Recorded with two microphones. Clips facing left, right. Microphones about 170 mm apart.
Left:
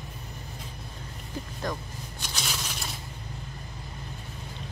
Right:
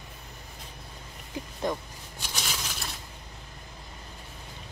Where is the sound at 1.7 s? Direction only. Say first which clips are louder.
Right 3 dB; 25° right (ahead or behind).